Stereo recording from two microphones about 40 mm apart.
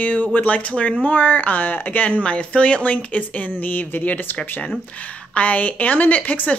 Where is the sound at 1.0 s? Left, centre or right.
Left.